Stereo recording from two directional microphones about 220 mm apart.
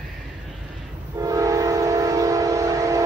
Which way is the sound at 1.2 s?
15° right (ahead or behind).